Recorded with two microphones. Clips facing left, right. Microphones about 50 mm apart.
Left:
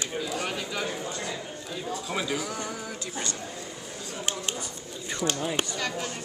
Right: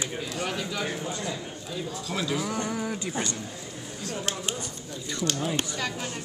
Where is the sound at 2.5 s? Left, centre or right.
Centre.